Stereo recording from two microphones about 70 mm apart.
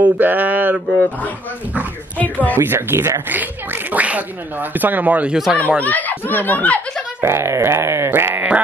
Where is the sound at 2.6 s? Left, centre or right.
Right.